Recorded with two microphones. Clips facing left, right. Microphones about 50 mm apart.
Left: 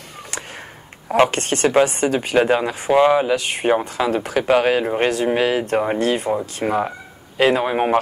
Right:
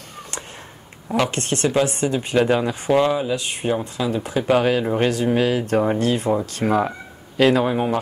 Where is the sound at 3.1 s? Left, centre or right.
Left.